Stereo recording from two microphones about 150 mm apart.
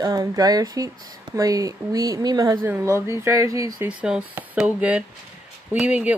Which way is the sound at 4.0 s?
10° right (ahead or behind).